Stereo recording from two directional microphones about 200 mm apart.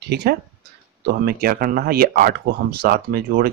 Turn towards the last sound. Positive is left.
turn(degrees=-50)  # may be behind; listen again after turning